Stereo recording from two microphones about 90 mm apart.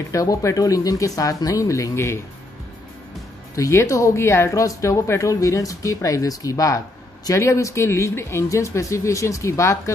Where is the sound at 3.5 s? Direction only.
35° left (ahead or behind).